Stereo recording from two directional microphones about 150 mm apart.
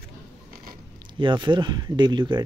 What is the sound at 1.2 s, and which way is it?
Speech, 30° right (ahead or behind).